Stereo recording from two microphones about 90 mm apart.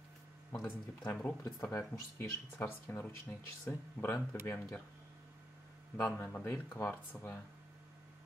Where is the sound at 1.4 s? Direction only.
35° left (ahead or behind).